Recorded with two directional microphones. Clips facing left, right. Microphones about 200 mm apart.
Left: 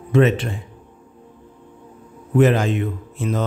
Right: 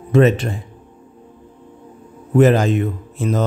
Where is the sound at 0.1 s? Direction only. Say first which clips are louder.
Right 3 dB; 40° right (ahead or behind).